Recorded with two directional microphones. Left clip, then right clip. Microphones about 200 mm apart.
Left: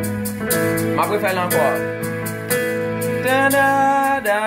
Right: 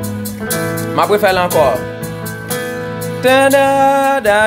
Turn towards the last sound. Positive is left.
turn(degrees=-50)  # may be behind; listen again after turning